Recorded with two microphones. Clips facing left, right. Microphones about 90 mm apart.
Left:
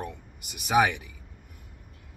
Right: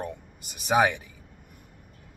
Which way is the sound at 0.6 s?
25° right (ahead or behind).